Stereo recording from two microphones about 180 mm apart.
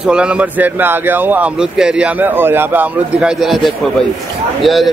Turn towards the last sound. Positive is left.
turn(degrees=0)  # may be behind; listen again after turning